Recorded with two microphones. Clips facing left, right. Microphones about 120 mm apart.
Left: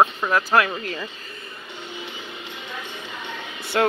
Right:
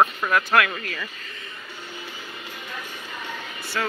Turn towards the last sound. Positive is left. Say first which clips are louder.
# left 8 dB
turn(degrees=50)  # may be behind; listen again after turning